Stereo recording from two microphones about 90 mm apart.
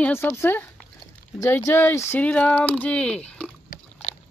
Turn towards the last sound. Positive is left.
turn(degrees=10)  # may be behind; listen again after turning